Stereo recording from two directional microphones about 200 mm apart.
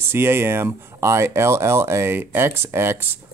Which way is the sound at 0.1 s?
10° right (ahead or behind).